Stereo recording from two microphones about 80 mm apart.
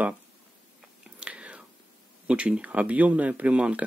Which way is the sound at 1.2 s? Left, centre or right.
Centre.